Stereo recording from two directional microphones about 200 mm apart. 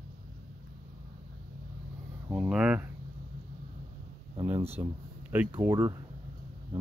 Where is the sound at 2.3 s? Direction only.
5° right (ahead or behind).